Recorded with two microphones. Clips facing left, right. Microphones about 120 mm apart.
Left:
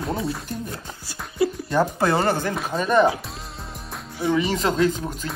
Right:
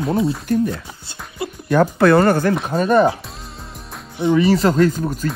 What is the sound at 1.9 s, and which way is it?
Speech, 55° right (ahead or behind).